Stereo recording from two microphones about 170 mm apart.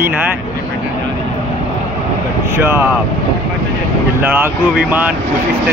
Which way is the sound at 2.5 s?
15° right (ahead or behind).